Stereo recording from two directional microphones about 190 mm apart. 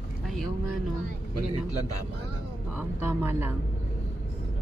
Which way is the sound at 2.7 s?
10° right (ahead or behind).